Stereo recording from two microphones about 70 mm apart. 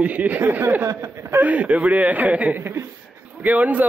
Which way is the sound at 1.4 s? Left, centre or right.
Right.